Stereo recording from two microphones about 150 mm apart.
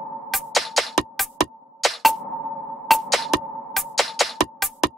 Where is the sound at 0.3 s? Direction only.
Centre (ahead or behind).